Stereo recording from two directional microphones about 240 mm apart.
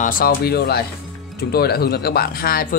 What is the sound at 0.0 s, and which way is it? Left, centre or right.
Speech, left.